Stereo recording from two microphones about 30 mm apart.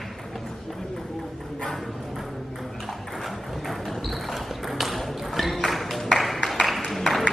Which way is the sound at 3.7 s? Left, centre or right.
Centre.